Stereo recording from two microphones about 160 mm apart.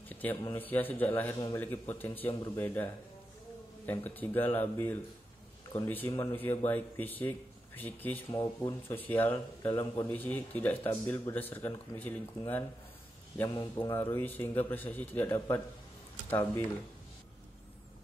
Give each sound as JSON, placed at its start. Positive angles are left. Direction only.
{"t": 0.1, "sound": "a sound", "side_deg": 10}
{"t": 0.6, "sound": "a man's voice", "side_deg": 10}
{"t": 8.3, "sound": "speech", "side_deg": 25}
{"t": 8.8, "sound": "a man's voice", "side_deg": 10}